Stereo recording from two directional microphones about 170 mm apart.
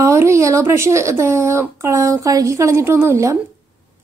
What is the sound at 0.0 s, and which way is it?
A woman's voice, 15° right (ahead or behind).